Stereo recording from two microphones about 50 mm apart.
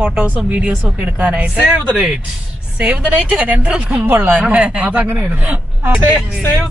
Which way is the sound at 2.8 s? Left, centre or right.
Right.